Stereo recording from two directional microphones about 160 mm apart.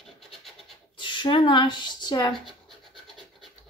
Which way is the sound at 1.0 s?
30° left (ahead or behind).